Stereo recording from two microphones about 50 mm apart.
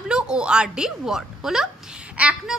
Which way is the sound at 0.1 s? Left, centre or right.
Centre.